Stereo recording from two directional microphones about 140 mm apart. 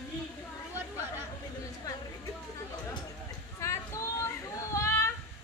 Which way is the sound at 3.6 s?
20° left (ahead or behind).